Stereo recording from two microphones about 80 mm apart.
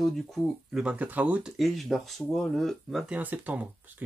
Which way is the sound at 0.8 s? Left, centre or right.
Centre.